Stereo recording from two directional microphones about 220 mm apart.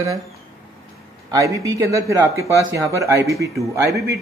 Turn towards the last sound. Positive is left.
turn(degrees=-15)  # may be behind; listen again after turning